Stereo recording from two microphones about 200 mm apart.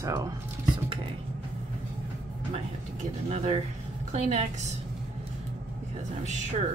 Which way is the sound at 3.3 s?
35° right (ahead or behind).